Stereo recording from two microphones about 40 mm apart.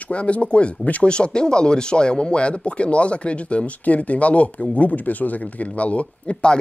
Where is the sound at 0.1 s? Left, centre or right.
Left.